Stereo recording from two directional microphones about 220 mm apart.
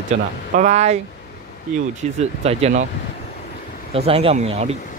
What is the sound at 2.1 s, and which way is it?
Speech, 30° right (ahead or behind).